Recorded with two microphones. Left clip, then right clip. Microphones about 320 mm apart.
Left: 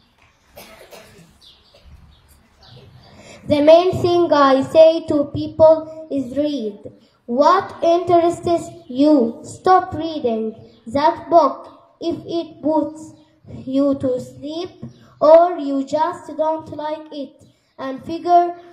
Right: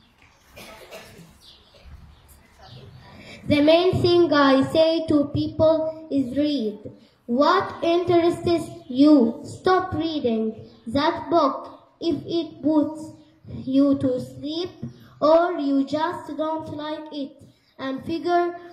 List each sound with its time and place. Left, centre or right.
3.2 s female singing: centre
4.3 s a woman's voice: left